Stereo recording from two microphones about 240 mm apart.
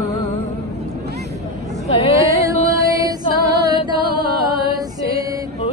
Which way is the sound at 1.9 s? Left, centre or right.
Left.